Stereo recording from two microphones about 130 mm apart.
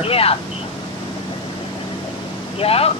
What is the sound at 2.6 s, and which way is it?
Speech, 50° left (ahead or behind).